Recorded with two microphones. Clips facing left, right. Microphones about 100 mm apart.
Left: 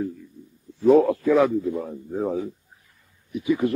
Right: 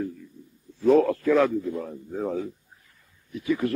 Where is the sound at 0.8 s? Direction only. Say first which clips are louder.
Left 3 dB; 10° left (ahead or behind).